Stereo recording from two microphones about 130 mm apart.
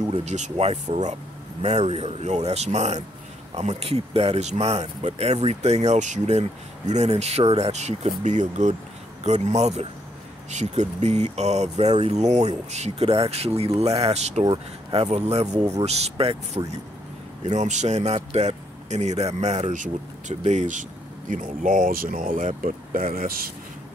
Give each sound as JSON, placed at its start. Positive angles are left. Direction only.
{"t": 0.1, "sound": "speech", "side_deg": -60}
{"t": 14.4, "sound": "speech", "side_deg": -40}
{"t": 17.5, "sound": "speech", "side_deg": -65}
{"t": 21.3, "sound": "speech", "side_deg": -85}